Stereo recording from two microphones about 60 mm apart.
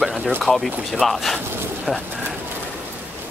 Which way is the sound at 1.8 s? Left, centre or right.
Centre.